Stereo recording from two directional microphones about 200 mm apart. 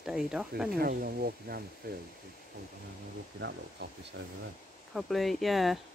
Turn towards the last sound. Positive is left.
turn(degrees=0)  # may be behind; listen again after turning